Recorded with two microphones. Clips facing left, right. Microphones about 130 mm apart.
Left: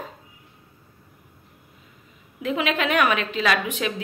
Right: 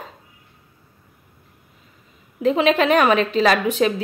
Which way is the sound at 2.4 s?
35° right (ahead or behind).